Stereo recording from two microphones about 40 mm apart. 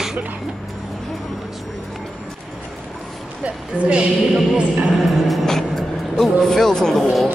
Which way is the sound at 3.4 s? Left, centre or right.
Right.